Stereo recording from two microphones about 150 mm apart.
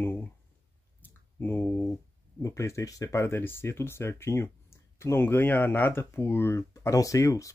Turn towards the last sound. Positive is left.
turn(degrees=20)  # may be behind; listen again after turning